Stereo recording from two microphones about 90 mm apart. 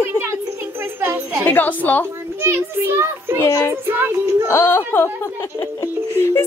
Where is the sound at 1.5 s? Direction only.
20° left (ahead or behind).